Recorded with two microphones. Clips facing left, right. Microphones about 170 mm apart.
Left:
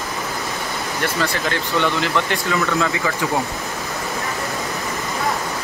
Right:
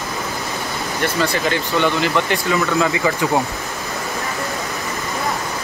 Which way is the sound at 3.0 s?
20° right (ahead or behind).